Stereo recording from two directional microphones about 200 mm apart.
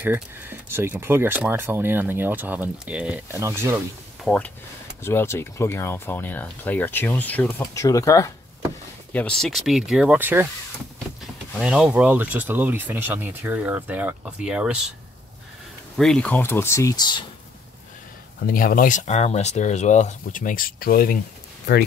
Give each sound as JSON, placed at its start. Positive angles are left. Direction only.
{"t": 0.0, "sound": "speech", "side_deg": -10}
{"t": 4.2, "sound": "speech", "side_deg": 5}
{"t": 9.1, "sound": "speech", "side_deg": 5}
{"t": 11.5, "sound": "speech", "side_deg": -5}
{"t": 16.0, "sound": "speech", "side_deg": 5}
{"t": 18.5, "sound": "speech", "side_deg": 45}